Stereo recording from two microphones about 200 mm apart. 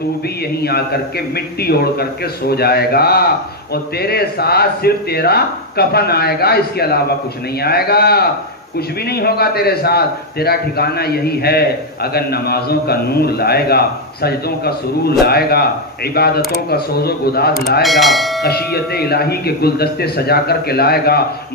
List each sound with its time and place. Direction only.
0.6 s a man's voice: 50° left (ahead or behind)
17.8 s speech: centre (ahead or behind)
18.4 s a man's voice: 50° left (ahead or behind)